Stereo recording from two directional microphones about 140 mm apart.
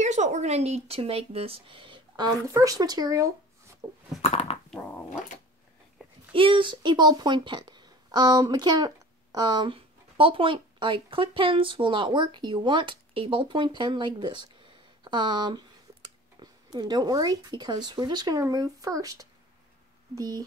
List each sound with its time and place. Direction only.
0.0 s speech: 55° right (ahead or behind); by 2.2 s 35° right (ahead or behind)
2.4 s speech: 25° right (ahead or behind)
4.2 s a sound: 45° left (ahead or behind)
6.3 s speech: 40° right (ahead or behind)